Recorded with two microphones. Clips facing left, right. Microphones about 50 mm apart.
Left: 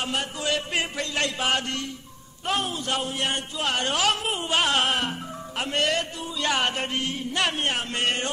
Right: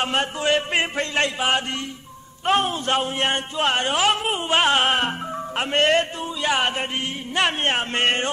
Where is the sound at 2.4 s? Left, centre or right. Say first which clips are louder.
Right 6 dB; right.